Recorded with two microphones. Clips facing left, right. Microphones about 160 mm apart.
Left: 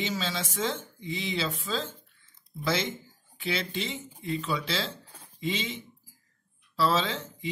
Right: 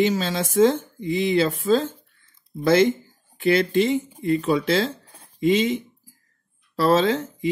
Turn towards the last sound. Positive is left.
turn(degrees=-50)  # may be behind; listen again after turning